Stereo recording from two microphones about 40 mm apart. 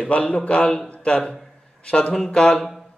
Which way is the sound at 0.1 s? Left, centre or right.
Left.